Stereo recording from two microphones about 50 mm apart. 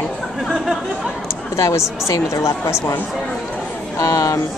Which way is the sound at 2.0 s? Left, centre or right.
Left.